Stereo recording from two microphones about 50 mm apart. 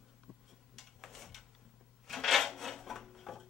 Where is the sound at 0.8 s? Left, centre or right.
Centre.